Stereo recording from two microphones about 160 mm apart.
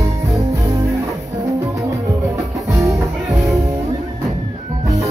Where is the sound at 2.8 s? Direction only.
20° right (ahead or behind).